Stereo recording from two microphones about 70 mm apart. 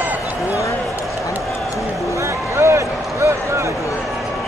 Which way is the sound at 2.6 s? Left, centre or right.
Right.